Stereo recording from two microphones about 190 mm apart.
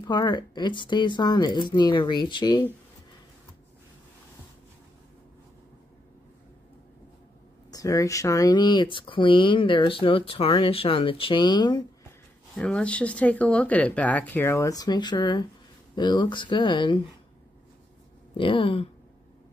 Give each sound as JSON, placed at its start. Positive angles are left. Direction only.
{"t": 0.0, "sound": "speech", "side_deg": 25}
{"t": 7.7, "sound": "speech", "side_deg": 20}
{"t": 12.5, "sound": "speech", "side_deg": 5}
{"t": 18.3, "sound": "speech", "side_deg": 25}